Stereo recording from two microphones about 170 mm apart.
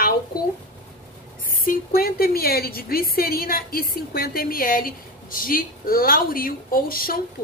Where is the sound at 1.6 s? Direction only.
60° left (ahead or behind).